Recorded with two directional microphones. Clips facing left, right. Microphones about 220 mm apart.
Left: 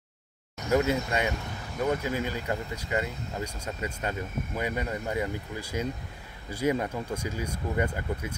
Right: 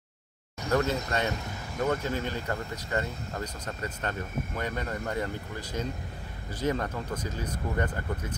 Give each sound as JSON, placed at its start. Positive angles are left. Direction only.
{"t": 0.7, "sound": "speech", "side_deg": 10}